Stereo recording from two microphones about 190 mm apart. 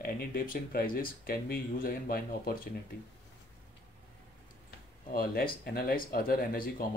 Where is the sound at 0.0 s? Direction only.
50° left (ahead or behind).